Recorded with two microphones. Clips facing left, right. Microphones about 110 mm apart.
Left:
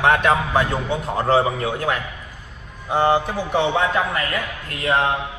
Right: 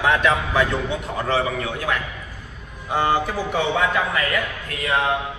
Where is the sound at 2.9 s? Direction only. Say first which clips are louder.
Left 2 dB; 20° left (ahead or behind).